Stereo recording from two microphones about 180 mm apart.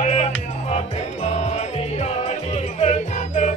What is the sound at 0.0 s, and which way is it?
Music, 35° left (ahead or behind).